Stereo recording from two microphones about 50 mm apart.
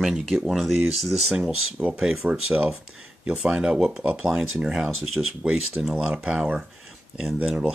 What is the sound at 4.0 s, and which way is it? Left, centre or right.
Speech, right.